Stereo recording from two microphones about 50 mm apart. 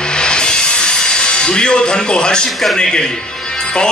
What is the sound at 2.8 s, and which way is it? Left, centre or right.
A man's voice, centre.